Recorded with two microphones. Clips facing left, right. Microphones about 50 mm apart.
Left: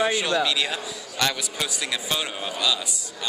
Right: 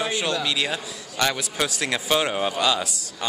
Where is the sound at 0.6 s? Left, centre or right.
Centre.